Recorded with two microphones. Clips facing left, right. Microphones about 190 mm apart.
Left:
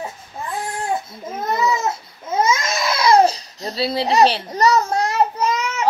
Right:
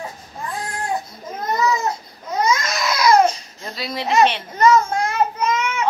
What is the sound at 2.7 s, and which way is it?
Babbling, 30° left (ahead or behind).